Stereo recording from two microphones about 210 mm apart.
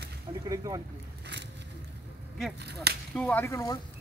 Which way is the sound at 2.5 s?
50° right (ahead or behind).